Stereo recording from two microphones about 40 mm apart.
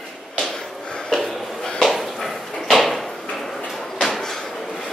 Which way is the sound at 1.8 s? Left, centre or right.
Centre.